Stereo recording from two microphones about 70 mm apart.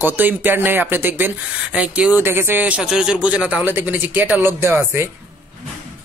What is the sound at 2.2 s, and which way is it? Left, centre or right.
Speech, right.